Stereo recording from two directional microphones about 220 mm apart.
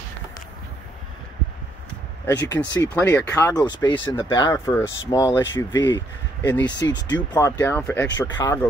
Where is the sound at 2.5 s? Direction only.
10° left (ahead or behind).